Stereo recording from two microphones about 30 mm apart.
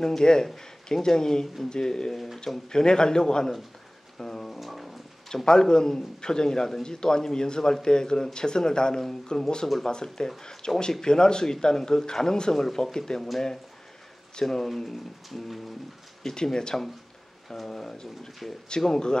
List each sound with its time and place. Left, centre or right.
0.0 s a man's voice: left
2.1 s music: centre
2.7 s a man's voice: left
4.2 s music: centre
4.6 s music: centre
5.3 s a man's voice: left
14.4 s speech: centre
15.2 s music: centre
16.2 s a man's voice: centre; by 18.9 s left